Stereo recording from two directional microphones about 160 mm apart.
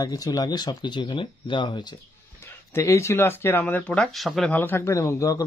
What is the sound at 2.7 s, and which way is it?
A man's voice, 15° left (ahead or behind).